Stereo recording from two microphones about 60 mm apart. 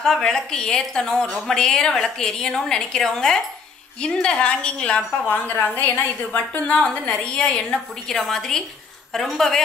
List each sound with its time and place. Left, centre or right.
0.0 s a woman's voice: centre; by 6.6 s left
6.7 s a woman's voice: centre